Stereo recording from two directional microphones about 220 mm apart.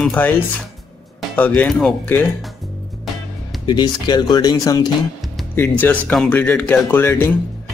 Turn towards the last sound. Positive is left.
turn(degrees=10)  # may be behind; listen again after turning